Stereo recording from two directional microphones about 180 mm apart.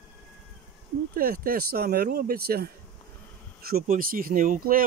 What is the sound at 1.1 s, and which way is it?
Speech, 55° right (ahead or behind).